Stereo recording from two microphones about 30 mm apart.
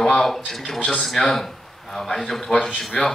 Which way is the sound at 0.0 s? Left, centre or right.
Centre.